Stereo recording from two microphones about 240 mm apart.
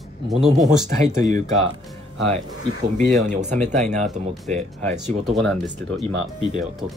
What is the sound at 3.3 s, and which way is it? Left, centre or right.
Speech, right.